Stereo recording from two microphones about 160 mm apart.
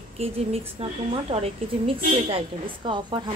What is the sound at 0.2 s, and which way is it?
A woman's voice, 40° right (ahead or behind).